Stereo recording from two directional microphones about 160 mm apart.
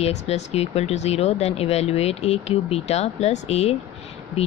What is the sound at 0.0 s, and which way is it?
Speech, 40° left (ahead or behind).